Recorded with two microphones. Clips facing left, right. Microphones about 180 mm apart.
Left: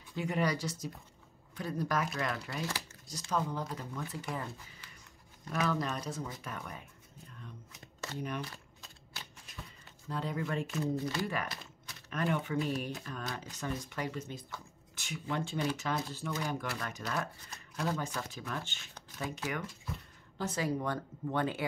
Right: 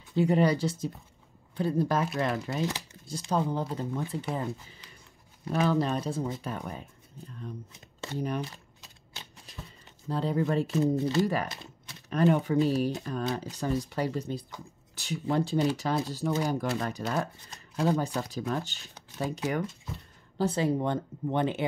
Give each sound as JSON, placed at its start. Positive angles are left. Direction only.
{"t": 0.1, "sound": "speech", "side_deg": -30}
{"t": 8.4, "sound": "camera", "side_deg": -20}
{"t": 10.0, "sound": "speech", "side_deg": -30}
{"t": 10.8, "sound": "speech", "side_deg": -25}